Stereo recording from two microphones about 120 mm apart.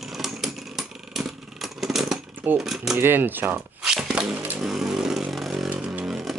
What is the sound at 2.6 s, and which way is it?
Speech, centre (ahead or behind).